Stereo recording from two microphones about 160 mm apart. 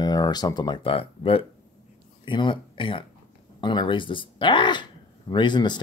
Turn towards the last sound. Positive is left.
turn(degrees=30)  # may be behind; listen again after turning